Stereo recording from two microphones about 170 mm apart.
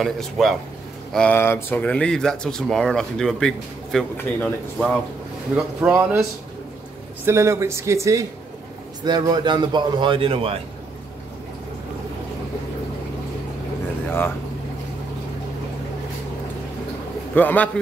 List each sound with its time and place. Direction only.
0.0 s speech: centre (ahead or behind)
5.8 s speech: 15° right (ahead or behind)
7.2 s a man's voice: 15° right (ahead or behind); by 10.6 s 35° right (ahead or behind)
17.4 s a man's voice: 10° left (ahead or behind)